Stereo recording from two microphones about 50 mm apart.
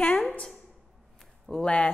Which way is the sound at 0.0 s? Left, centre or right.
Left.